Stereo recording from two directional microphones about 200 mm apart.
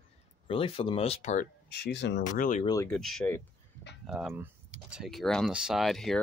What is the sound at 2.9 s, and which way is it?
Speech, centre (ahead or behind).